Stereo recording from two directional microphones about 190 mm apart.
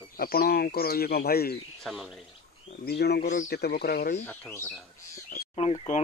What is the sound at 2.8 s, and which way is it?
Speech, 60° left (ahead or behind).